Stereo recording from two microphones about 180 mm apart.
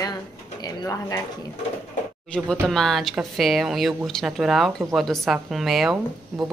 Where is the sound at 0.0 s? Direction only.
20° left (ahead or behind).